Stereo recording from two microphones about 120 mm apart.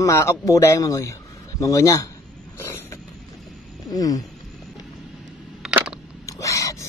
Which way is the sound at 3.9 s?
30° left (ahead or behind).